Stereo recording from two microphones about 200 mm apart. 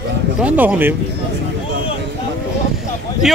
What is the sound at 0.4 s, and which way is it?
Speech, 5° right (ahead or behind).